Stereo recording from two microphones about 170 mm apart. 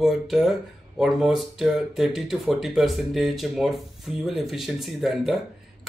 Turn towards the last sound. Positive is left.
turn(degrees=0)  # may be behind; listen again after turning